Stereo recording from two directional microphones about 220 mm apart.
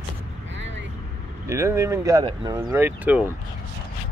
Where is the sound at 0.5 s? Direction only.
55° right (ahead or behind).